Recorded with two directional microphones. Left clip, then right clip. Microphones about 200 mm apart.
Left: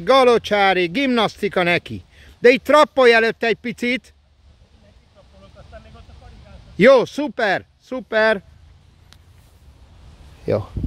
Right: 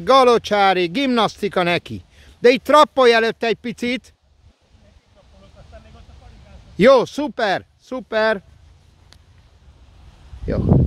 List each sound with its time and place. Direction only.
0.0 s speech: 15° right (ahead or behind)
6.8 s speech: 15° right (ahead or behind)
10.5 s speech: 25° left (ahead or behind)